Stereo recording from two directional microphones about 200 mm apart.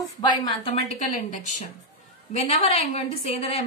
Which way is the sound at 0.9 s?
40° left (ahead or behind).